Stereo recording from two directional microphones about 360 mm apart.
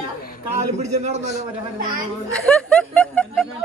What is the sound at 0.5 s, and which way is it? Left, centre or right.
Speech, centre.